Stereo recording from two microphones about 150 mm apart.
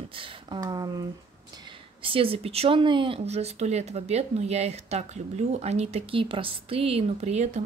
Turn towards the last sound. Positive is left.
turn(degrees=-45)  # may be behind; listen again after turning